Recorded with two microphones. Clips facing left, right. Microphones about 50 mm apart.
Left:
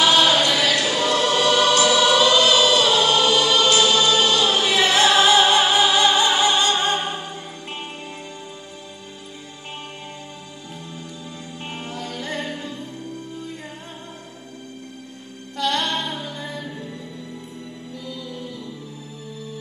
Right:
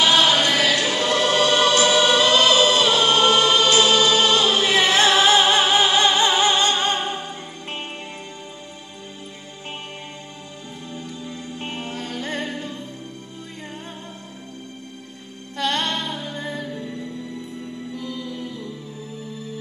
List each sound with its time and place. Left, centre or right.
0.0 s music: right
10.9 s music: right
15.5 s music: right
15.9 s music: left
16.3 s music: right
17.9 s music: right